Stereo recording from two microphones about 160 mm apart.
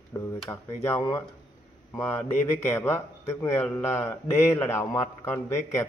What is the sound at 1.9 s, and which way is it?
Speech, 15° left (ahead or behind).